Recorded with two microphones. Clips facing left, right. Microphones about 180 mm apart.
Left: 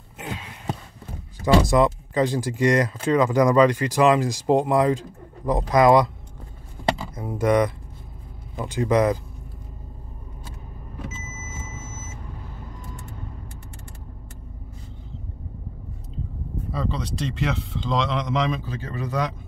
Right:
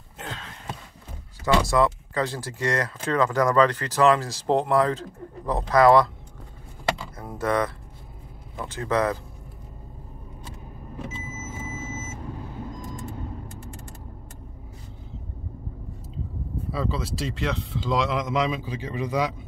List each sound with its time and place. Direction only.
0.2 s a sound: 10° left (ahead or behind)
1.4 s speech: 20° left (ahead or behind)
7.2 s speech: 15° left (ahead or behind)
16.7 s speech: 5° right (ahead or behind)